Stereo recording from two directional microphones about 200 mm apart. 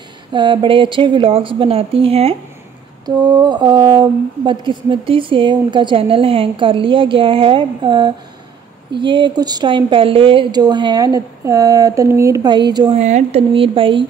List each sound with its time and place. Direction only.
0.3 s a woman's voice: 25° right (ahead or behind)